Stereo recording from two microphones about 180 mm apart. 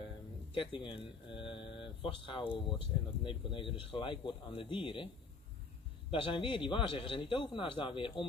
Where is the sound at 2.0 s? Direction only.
25° left (ahead or behind).